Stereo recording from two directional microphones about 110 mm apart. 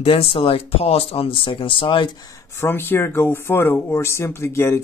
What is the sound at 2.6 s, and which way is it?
Speech, 20° left (ahead or behind).